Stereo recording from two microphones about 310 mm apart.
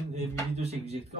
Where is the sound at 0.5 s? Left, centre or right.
Centre.